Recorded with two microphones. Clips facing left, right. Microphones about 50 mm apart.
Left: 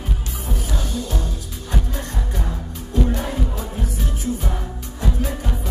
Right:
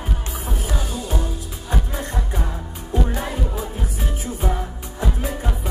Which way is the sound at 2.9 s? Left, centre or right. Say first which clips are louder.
Left 2 dB; centre.